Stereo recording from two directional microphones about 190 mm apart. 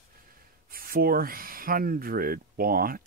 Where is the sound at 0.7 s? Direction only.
50° right (ahead or behind).